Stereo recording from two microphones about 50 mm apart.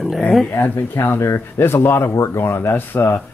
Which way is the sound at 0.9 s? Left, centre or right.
Left.